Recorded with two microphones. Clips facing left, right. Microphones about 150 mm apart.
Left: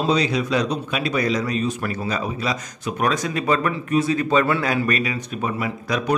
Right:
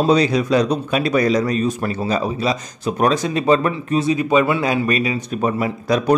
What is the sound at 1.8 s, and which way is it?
Speech, 30° right (ahead or behind).